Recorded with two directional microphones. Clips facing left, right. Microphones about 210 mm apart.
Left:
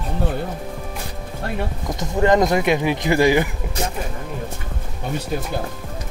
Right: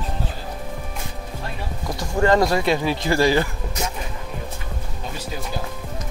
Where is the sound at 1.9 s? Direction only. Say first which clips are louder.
Left 1 dB; 20° left (ahead or behind).